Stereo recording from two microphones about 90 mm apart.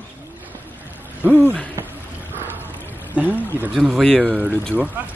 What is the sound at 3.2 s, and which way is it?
Speech, 15° right (ahead or behind).